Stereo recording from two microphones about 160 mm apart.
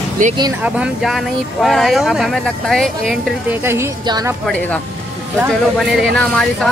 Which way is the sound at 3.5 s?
15° right (ahead or behind).